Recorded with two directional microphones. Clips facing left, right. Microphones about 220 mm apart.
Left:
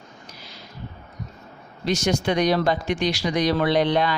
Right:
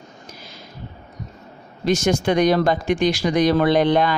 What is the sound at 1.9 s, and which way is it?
Speech, 50° right (ahead or behind).